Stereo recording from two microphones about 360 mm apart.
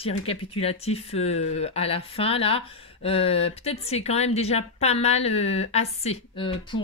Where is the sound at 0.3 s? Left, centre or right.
Centre.